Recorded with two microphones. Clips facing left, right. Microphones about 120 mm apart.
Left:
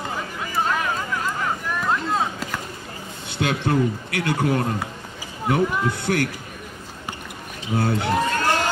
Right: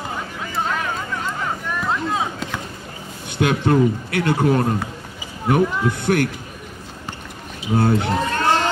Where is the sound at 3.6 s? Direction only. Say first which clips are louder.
Right 5 dB; 25° right (ahead or behind).